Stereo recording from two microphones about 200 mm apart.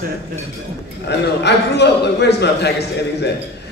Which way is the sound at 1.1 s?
60° left (ahead or behind).